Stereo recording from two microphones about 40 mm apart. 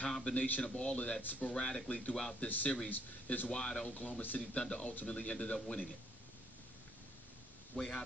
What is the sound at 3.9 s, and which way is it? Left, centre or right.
Speech, left.